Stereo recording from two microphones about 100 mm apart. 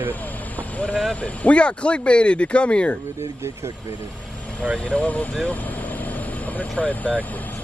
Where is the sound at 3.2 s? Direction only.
25° right (ahead or behind).